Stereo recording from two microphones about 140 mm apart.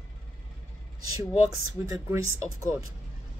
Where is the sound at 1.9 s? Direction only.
20° right (ahead or behind).